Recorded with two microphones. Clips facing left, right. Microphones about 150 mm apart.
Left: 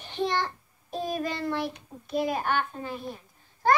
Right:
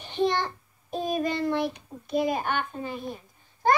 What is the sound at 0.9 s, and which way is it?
Child singing, 20° right (ahead or behind).